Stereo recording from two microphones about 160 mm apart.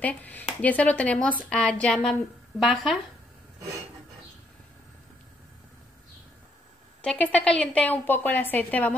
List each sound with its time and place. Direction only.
0.0 s a woman's voice: 10° left (ahead or behind)
7.0 s a woman's voice: 10° left (ahead or behind)